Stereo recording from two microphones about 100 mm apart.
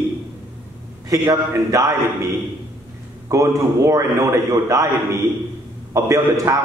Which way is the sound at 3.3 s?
30° right (ahead or behind).